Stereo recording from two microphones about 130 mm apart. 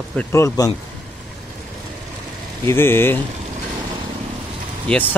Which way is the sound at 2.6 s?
20° left (ahead or behind).